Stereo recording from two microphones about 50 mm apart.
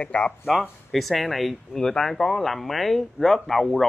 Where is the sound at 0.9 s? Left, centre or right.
Centre.